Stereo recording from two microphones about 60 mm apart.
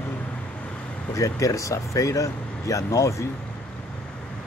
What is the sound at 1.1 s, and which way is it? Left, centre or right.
Speech, left.